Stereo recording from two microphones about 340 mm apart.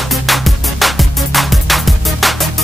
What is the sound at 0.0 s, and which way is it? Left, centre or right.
Music, centre.